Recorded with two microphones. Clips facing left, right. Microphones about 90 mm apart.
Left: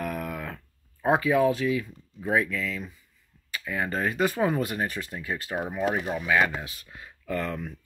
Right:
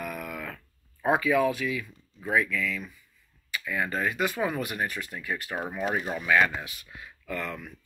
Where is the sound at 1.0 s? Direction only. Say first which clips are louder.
Left 2 dB; 25° left (ahead or behind).